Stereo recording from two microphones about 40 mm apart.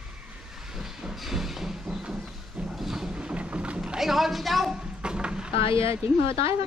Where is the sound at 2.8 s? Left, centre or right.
Centre.